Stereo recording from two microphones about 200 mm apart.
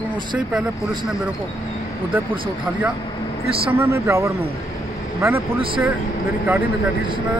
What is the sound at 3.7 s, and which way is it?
Speech, 15° right (ahead or behind).